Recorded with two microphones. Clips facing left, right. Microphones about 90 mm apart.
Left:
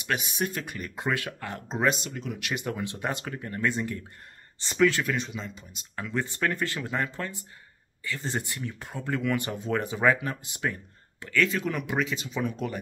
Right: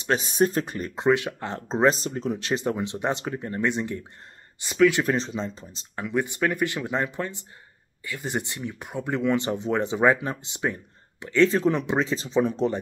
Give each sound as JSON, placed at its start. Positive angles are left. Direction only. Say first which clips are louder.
{"t": 0.0, "sound": "speech", "louder": "right 7 dB", "side_deg": -30}
{"t": 5.0, "sound": "speech", "louder": "right 5 dB", "side_deg": -30}
{"t": 6.0, "sound": "speech", "louder": "right 4 dB", "side_deg": -15}